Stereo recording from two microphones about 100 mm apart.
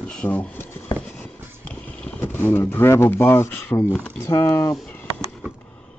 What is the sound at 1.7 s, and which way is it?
Speech, 20° left (ahead or behind).